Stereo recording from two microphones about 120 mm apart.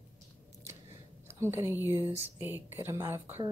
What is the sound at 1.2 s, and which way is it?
Speech, 20° right (ahead or behind).